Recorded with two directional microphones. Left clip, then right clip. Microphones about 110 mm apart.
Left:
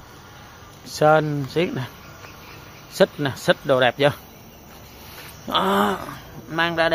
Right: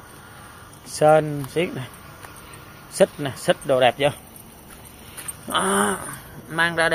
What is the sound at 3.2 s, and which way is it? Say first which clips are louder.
Speech: left 2 dB; 40° left (ahead or behind).